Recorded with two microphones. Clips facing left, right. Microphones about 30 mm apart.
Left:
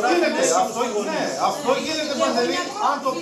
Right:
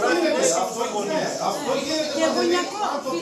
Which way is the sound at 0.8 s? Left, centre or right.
Centre.